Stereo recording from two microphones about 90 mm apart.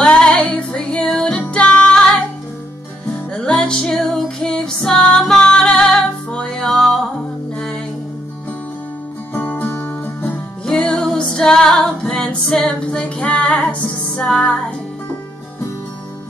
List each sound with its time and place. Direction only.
0.0 s music: 10° left (ahead or behind)
3.3 s music: 5° left (ahead or behind)
9.3 s music: 20° left (ahead or behind)
10.6 s music: 5° left (ahead or behind)